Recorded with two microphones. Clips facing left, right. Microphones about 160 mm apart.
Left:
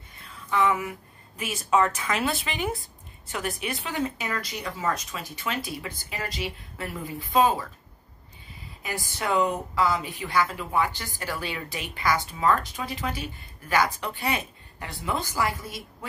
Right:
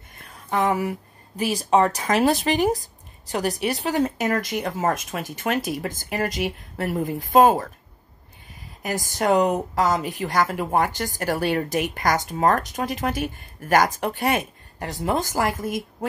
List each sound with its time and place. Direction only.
0.2 s a woman's voice: 45° right (ahead or behind)
8.8 s speech: 45° right (ahead or behind)